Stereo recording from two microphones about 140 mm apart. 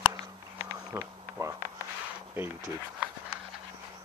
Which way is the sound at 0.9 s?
15° right (ahead or behind).